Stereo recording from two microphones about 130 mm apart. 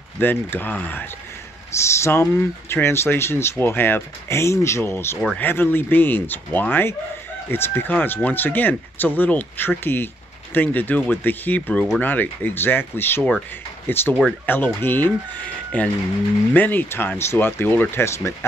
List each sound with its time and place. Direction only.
0.2 s speech: 15° left (ahead or behind)